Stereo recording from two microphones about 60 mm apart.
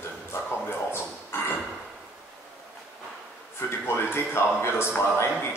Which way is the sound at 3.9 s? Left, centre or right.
Left.